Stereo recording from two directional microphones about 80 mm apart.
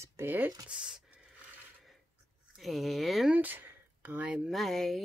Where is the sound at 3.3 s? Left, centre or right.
Right.